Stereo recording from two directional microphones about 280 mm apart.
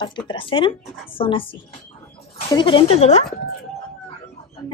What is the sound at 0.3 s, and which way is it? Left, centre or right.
Speech, centre.